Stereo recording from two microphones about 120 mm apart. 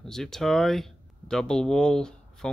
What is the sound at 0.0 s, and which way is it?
Speech, 5° left (ahead or behind).